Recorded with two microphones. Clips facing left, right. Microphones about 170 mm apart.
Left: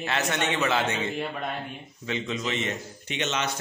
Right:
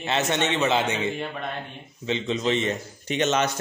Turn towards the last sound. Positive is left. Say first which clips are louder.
# right 6 dB
turn(degrees=-45)  # may be behind; listen again after turning